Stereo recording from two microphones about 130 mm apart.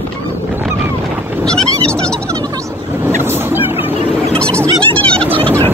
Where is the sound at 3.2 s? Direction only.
15° right (ahead or behind).